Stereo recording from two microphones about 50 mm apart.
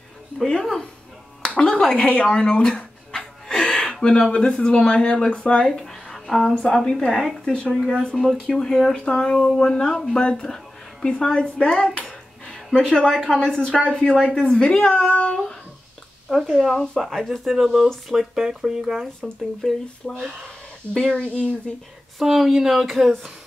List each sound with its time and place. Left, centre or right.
0.4 s speech: centre
5.7 s music: centre
6.5 s speech: centre
12.1 s dog: centre
12.7 s speech: centre
16.3 s speech: centre
20.9 s speech: centre
22.2 s speech: centre